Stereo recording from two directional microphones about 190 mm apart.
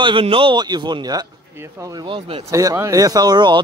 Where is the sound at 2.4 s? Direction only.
15° right (ahead or behind).